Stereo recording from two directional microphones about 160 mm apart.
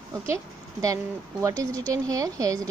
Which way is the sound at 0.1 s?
20° right (ahead or behind).